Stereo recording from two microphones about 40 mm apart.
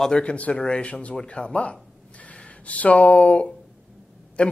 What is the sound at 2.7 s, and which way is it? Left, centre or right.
A man's voice, left.